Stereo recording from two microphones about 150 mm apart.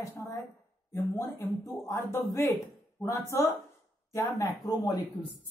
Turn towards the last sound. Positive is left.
turn(degrees=25)  # may be behind; listen again after turning